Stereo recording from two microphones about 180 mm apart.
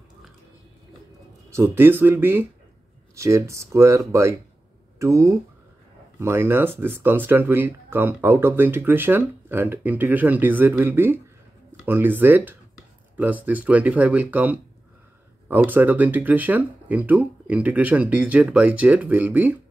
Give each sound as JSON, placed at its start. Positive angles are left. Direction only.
{"t": 1.5, "sound": "speech", "side_deg": -15}